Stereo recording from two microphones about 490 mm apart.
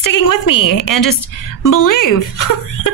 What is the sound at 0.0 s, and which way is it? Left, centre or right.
Speech, left.